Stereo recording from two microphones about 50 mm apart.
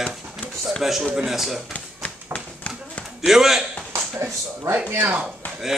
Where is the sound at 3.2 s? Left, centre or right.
Centre.